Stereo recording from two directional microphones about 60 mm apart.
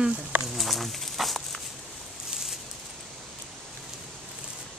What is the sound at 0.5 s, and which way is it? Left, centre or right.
Insect, centre.